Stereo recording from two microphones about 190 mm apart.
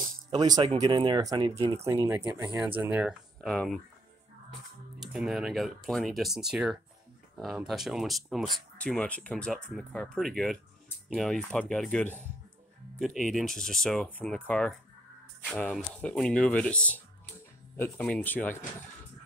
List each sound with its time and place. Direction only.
0.3 s speech: 20° right (ahead or behind); by 3.8 s 5° left (ahead or behind)
5.0 s speech: centre (ahead or behind)